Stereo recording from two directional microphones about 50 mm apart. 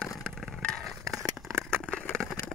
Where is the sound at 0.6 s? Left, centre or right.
Left.